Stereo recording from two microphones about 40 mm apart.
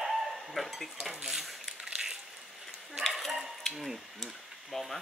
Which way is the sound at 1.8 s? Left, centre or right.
Centre.